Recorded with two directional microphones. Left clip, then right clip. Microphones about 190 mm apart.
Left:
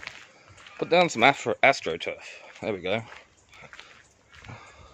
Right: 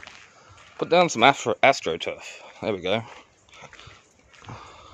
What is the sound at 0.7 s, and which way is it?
Speech, 15° right (ahead or behind).